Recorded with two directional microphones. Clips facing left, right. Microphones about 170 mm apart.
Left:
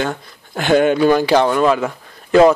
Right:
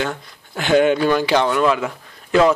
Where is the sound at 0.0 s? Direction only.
45° left (ahead or behind).